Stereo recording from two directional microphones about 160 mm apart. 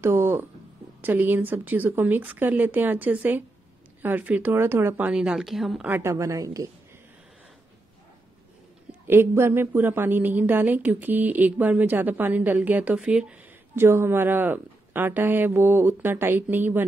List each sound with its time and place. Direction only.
0.0 s speech: 15° right (ahead or behind)
5.9 s a woman's voice: 15° right (ahead or behind)
9.0 s speech: 15° right (ahead or behind)